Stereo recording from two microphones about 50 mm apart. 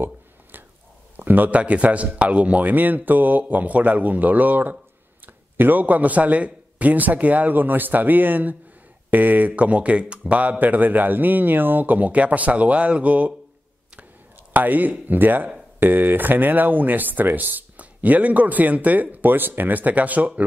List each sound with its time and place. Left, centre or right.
0.0 s a sound: right
1.1 s speech: right
1.6 s a man's voice: right
14.5 s speech: right